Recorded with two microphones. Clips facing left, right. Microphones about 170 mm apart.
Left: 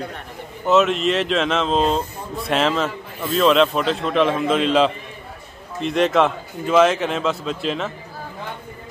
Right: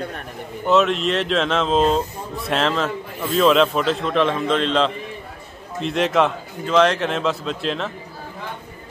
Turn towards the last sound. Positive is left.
turn(degrees=0)  # may be behind; listen again after turning